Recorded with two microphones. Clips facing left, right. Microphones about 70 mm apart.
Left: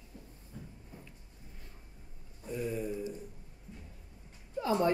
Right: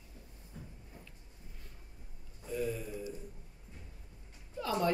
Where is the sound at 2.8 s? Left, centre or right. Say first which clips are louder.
Left 5 dB; left.